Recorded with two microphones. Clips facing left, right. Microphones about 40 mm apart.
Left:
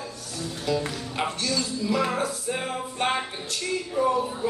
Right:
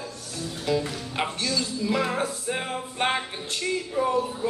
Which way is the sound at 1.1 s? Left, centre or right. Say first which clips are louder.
Even; centre.